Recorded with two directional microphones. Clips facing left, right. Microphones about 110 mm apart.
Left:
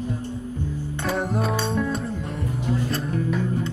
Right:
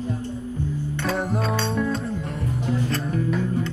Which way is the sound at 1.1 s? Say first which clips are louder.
Left 2 dB; centre (ahead or behind).